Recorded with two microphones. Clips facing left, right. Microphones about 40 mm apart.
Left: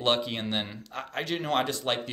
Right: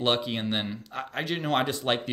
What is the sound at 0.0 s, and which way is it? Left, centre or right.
Speech, centre.